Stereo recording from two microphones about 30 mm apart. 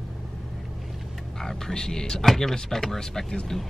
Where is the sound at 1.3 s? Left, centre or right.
Centre.